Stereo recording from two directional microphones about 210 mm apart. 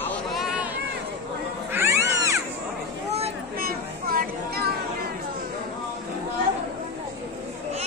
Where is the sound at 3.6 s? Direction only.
45° right (ahead or behind).